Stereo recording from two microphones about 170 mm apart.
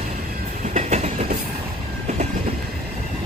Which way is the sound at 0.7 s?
40° right (ahead or behind).